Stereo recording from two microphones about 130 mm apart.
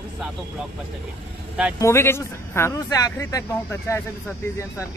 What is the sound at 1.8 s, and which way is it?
A man's voice, 20° left (ahead or behind).